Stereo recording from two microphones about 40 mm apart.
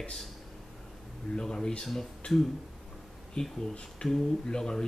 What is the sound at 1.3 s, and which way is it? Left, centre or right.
Speech, centre.